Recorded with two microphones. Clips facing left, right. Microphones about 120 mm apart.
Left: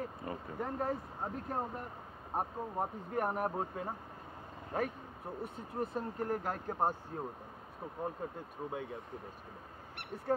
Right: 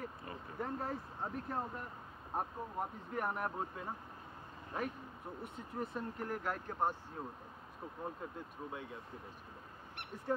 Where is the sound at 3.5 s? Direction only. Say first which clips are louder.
Left 4 dB; 30° left (ahead or behind).